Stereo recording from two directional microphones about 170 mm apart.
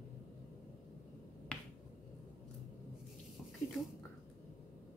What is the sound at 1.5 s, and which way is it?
Finger snapping, 5° left (ahead or behind).